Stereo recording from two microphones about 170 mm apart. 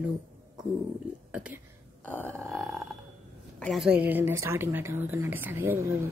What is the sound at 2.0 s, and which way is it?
Burping, 10° left (ahead or behind).